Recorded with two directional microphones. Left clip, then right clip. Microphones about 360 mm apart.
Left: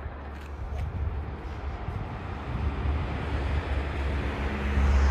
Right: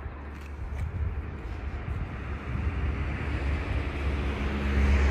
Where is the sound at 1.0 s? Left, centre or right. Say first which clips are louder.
Left 2 dB; left.